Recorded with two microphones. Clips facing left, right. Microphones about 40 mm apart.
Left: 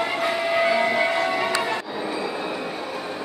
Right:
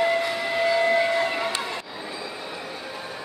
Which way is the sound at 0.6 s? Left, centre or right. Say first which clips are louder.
Right 3 dB; left.